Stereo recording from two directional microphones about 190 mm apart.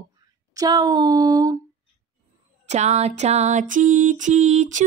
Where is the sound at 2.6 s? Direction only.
35° right (ahead or behind).